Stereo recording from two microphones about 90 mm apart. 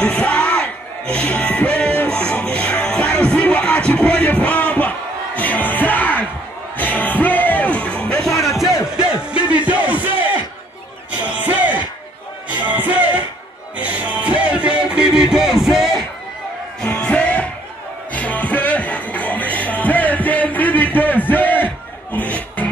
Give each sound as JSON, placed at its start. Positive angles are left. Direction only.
{"t": 0.0, "sound": "music", "side_deg": 10}
{"t": 8.8, "sound": "music", "side_deg": -10}
{"t": 16.8, "sound": "music", "side_deg": 15}